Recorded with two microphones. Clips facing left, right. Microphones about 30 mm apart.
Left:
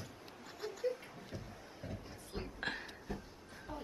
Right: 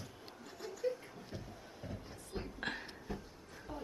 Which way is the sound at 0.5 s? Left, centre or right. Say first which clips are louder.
Even; centre.